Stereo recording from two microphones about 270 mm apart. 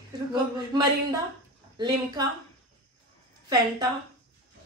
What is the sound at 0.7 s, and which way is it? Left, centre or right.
A woman's voice, centre.